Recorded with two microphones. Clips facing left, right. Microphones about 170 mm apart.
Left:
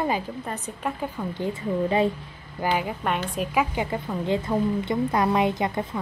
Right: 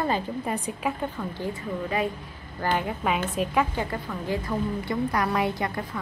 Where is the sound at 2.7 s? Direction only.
5° left (ahead or behind).